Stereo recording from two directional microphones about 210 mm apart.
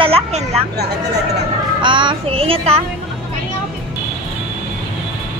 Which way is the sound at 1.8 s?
20° right (ahead or behind).